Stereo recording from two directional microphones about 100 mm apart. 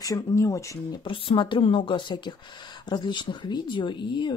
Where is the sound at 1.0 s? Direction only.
60° left (ahead or behind).